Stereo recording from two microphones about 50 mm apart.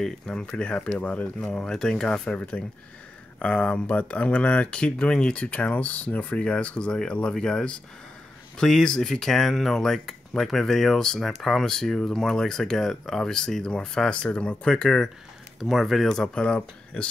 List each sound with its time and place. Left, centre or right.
0.0 s speech: centre
1.7 s speech: centre
15.7 s speech: centre
16.2 s speech: left